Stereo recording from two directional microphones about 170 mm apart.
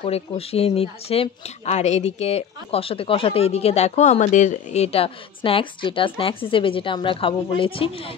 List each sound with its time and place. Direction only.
0.0 s speech: 35° left (ahead or behind)